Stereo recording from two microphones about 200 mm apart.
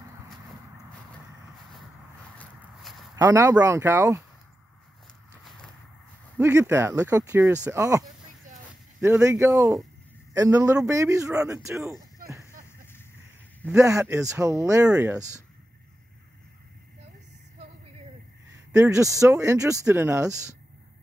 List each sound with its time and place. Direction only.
2.3 s walk: centre (ahead or behind)
3.2 s speech: 15° right (ahead or behind)
6.3 s speech: 10° right (ahead or behind)
9.0 s speech: 15° right (ahead or behind)
12.2 s a sound: 45° right (ahead or behind)
13.7 s speech: 15° right (ahead or behind)
18.7 s speech: 15° right (ahead or behind)